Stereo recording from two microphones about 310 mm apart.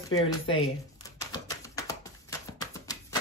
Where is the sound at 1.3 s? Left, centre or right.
Centre.